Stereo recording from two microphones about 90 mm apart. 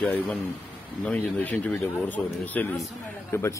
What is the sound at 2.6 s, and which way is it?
Speech, 15° left (ahead or behind).